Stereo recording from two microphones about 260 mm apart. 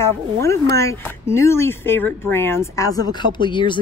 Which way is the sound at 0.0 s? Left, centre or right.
Centre.